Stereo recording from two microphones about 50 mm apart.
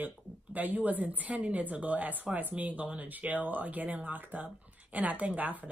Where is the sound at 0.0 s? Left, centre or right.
Right.